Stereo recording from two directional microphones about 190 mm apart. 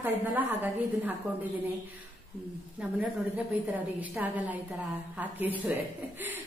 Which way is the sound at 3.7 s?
10° right (ahead or behind).